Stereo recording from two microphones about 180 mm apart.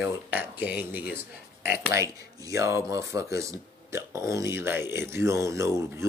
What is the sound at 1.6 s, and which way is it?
Speech, 15° right (ahead or behind).